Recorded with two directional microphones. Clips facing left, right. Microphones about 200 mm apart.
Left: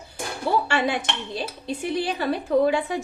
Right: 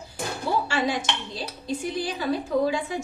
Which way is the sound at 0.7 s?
65° left (ahead or behind).